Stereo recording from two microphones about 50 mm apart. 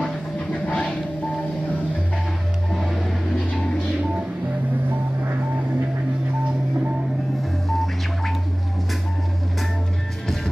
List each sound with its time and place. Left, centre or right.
0.0 s train: left
2.7 s a sound: centre
7.6 s music: centre